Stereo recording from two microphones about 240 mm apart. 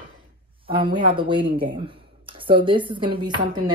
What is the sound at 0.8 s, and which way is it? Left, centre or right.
Speech, right.